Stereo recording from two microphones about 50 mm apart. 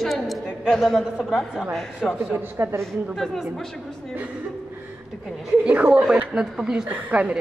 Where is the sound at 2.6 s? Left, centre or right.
Right.